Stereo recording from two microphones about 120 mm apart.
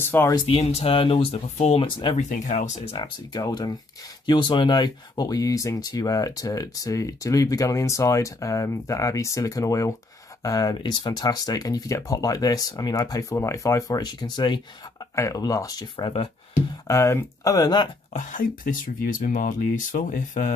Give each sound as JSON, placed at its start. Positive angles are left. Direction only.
{"t": 0.0, "sound": "speech", "side_deg": 20}
{"t": 0.5, "sound": "speech", "side_deg": 60}
{"t": 1.9, "sound": "speech", "side_deg": 45}
{"t": 2.1, "sound": "speech", "side_deg": 90}
{"t": 2.9, "sound": "speech", "side_deg": 35}
{"t": 15.1, "sound": "speech", "side_deg": 30}
{"t": 19.1, "sound": "speech", "side_deg": 90}